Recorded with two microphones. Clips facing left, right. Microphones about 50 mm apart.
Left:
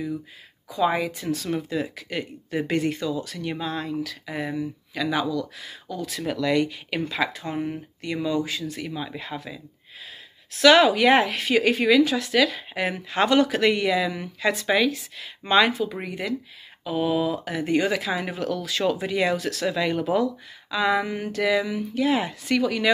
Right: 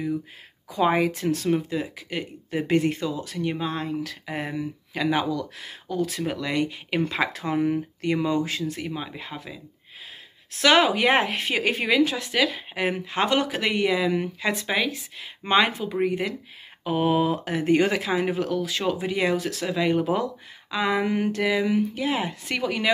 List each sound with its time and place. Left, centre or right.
0.7 s speech: right
1.4 s speech: right
1.7 s speech: centre
4.0 s speech: right
6.2 s speech: right
7.3 s speech: right
8.5 s speech: right
8.8 s speech: centre
10.6 s speech: right
16.8 s speech: right
18.1 s speech: right
21.0 s speech: right
21.4 s speech: centre